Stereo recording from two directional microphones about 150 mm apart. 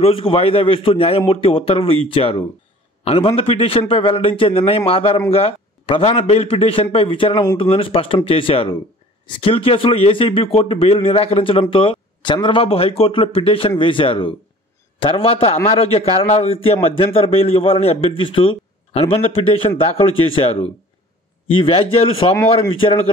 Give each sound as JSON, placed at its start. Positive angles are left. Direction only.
{"t": 0.0, "sound": "a man's voice", "side_deg": 35}